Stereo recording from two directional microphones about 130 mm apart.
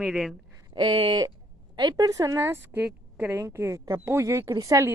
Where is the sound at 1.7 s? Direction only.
30° right (ahead or behind); by 3.4 s 10° right (ahead or behind).